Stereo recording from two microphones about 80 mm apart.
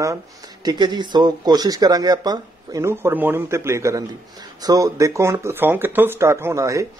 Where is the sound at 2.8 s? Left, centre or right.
Right.